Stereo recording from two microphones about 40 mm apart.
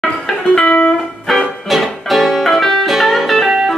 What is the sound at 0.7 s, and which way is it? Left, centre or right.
Music, left.